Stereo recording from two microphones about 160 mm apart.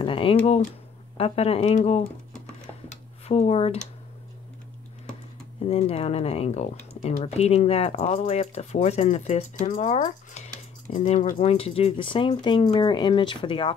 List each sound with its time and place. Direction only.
0.0 s speech: 35° left (ahead or behind)
2.9 s a sound: 45° left (ahead or behind)
5.7 s speech: 40° left (ahead or behind)